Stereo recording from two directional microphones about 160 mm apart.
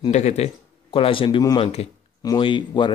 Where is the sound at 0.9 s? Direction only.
35° left (ahead or behind).